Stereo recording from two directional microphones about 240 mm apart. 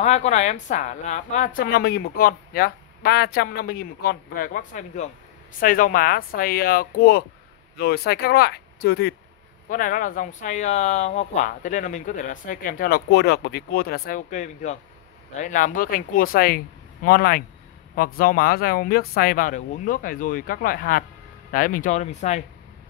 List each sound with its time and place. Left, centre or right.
0.0 s a woman's voice: left